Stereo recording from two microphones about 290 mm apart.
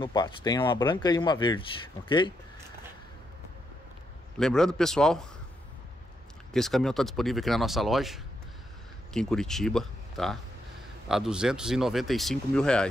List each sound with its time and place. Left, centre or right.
0.0 s speech: centre
4.4 s speech: centre
6.5 s speech: centre